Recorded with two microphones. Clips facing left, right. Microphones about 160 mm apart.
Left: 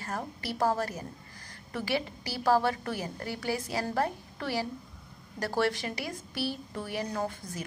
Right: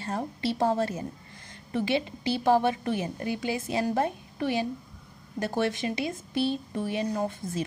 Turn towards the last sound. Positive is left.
turn(degrees=-20)  # may be behind; listen again after turning